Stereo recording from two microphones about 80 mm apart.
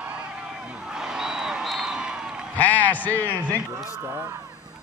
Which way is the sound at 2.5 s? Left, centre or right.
Left.